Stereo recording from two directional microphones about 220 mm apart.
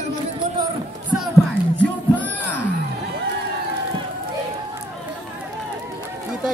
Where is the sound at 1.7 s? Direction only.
5° left (ahead or behind).